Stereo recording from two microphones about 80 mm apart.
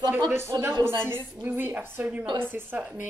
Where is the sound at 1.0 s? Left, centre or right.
Right.